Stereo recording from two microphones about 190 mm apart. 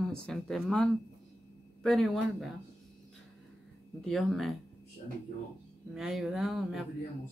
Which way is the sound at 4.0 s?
Centre (ahead or behind).